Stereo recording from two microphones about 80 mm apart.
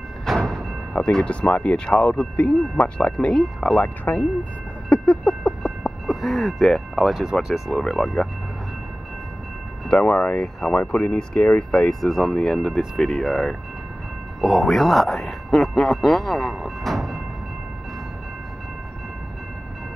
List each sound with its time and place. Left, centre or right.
0.2 s music: centre
1.1 s speech: centre
3.8 s speech: left
4.8 s a sound: centre
6.0 s speech: centre
9.8 s speech: centre